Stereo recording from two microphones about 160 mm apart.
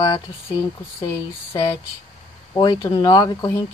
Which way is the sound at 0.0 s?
30° left (ahead or behind).